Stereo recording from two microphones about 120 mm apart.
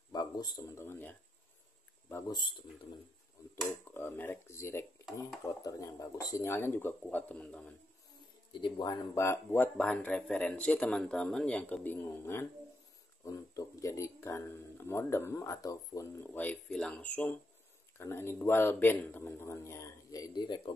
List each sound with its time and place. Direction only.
0.1 s speech: 35° left (ahead or behind)
2.2 s speech: 40° left (ahead or behind)
3.9 s speech: 15° left (ahead or behind)
8.5 s speech: 40° left (ahead or behind)
9.1 s speech: 20° left (ahead or behind)
16.3 s speech: 15° left (ahead or behind); by 20.7 s 40° left (ahead or behind)